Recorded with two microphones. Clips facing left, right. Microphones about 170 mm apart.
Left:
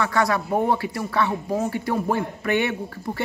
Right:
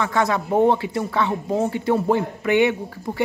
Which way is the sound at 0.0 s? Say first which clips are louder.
Right 1 dB; 20° right (ahead or behind).